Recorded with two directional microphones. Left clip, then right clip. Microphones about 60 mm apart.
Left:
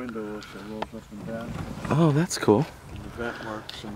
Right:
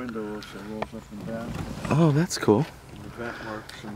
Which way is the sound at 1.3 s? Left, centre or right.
Right.